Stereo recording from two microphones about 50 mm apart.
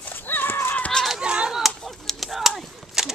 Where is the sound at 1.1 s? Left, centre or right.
Centre.